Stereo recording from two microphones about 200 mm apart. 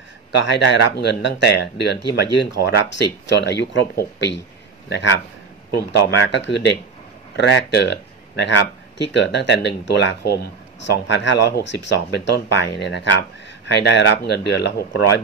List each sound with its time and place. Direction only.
0.4 s a man's voice: 60° left (ahead or behind)